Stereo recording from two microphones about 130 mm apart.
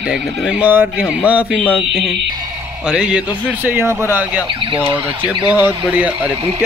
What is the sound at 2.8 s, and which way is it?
Speech, 5° right (ahead or behind).